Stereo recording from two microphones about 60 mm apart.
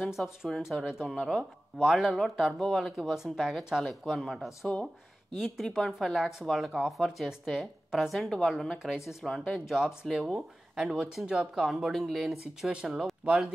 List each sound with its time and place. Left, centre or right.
0.0 s speech: centre